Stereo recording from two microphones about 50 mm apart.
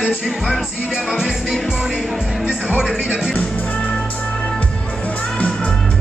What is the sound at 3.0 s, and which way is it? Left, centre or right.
Music, centre.